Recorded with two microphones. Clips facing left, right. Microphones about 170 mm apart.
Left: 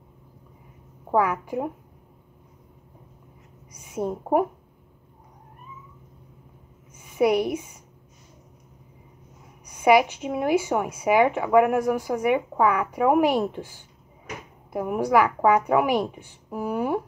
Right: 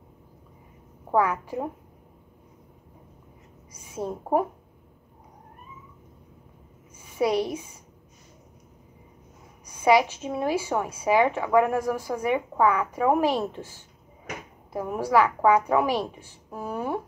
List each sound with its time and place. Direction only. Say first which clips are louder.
1.1 s a woman's voice: left 1 dB; 5° left (ahead or behind)
3.8 s a woman's voice: left 4 dB; 15° left (ahead or behind)
7.0 s a woman's voice: left 3 dB; 15° left (ahead or behind)
9.7 s a woman's voice: left 2 dB; 15° left (ahead or behind)